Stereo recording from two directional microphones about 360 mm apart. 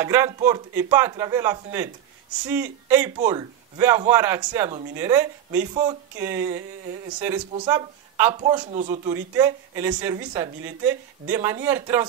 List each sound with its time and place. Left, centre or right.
0.0 s speech: centre